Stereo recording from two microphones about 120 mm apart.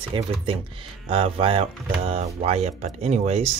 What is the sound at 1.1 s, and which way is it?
Speech, 50° right (ahead or behind).